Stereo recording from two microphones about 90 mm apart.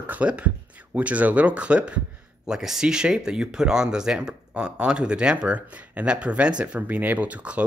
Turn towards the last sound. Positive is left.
turn(degrees=-15)  # may be behind; listen again after turning